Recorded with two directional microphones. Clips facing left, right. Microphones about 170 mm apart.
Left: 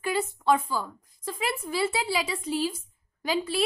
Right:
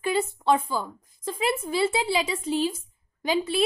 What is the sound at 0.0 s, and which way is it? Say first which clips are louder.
A woman's voice: right 2 dB; 25° right (ahead or behind).